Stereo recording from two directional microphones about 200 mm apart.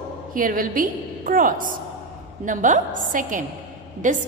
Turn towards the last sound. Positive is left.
turn(degrees=-40)  # may be behind; listen again after turning